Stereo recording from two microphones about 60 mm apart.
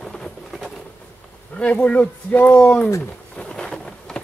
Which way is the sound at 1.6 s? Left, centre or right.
Left.